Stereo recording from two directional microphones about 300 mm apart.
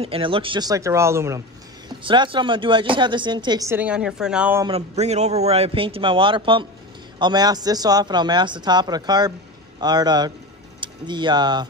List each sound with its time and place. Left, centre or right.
0.0 s a woman's voice: centre